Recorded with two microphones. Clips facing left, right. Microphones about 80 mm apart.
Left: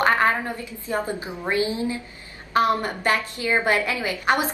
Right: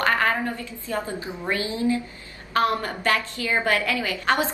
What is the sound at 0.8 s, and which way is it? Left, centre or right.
A woman's voice, left.